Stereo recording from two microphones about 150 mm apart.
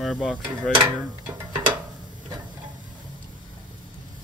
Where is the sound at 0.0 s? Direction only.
Centre (ahead or behind).